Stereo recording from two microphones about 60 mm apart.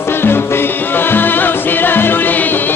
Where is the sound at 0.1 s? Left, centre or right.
Left.